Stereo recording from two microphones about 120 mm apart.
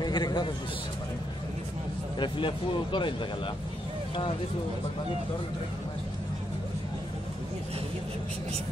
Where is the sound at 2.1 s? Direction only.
40° left (ahead or behind).